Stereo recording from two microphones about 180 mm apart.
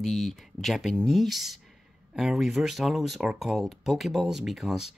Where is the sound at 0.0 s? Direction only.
Centre (ahead or behind).